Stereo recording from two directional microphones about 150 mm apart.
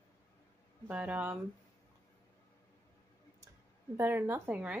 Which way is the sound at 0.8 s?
10° right (ahead or behind).